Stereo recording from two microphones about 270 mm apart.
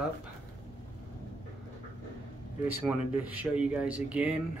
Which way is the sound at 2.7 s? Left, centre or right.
Centre.